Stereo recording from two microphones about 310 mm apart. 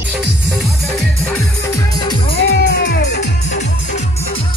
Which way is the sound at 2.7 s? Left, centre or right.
Left.